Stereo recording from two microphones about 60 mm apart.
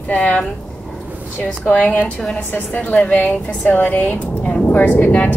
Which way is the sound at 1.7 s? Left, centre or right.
Left.